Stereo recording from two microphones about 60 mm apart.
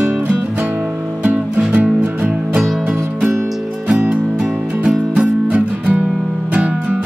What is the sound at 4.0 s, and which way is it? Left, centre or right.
Music, centre.